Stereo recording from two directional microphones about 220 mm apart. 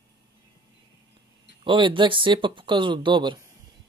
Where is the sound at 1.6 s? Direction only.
20° right (ahead or behind).